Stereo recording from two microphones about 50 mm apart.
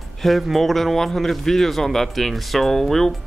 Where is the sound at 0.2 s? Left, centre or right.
Centre.